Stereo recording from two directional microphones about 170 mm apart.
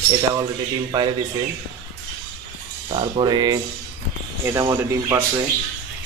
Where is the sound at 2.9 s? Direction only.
30° right (ahead or behind).